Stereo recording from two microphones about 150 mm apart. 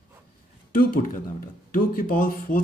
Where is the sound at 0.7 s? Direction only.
70° left (ahead or behind).